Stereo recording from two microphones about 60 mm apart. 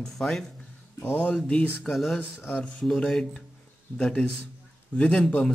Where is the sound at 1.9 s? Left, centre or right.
Centre.